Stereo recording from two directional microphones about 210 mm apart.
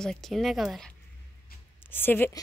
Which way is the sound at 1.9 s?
10° left (ahead or behind).